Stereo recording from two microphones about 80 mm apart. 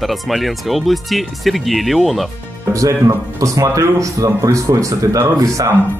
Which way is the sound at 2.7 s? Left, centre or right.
Right.